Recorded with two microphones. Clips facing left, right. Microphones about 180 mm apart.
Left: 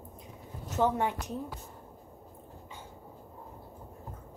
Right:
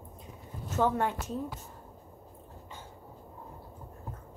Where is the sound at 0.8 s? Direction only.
15° left (ahead or behind).